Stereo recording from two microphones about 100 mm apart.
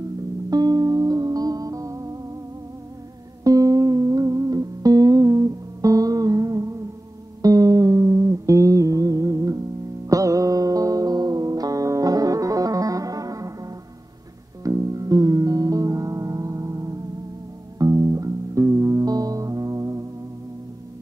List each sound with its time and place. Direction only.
0.5 s music: 40° right (ahead or behind)
3.4 s music: 35° right (ahead or behind)